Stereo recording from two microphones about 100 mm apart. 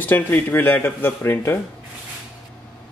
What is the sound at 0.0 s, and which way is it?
A man's voice, 20° left (ahead or behind).